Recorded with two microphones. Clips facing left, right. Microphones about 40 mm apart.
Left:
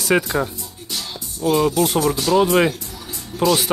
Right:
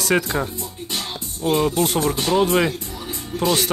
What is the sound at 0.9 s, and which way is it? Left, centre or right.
Music, right.